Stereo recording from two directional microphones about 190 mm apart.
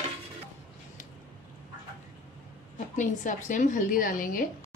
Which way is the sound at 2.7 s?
40° left (ahead or behind).